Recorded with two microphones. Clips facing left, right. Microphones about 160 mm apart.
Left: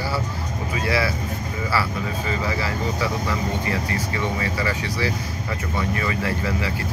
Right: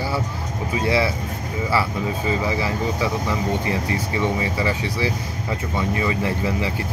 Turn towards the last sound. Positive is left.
turn(degrees=-20)  # may be behind; listen again after turning